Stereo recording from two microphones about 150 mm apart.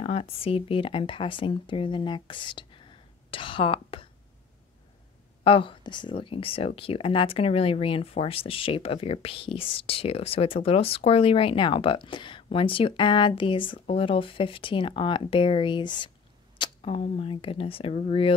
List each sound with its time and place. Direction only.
0.0 s speech: 40° left (ahead or behind)
5.4 s speech: 35° left (ahead or behind)